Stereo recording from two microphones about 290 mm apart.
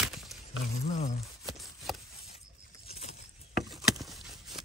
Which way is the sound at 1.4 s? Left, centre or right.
Centre.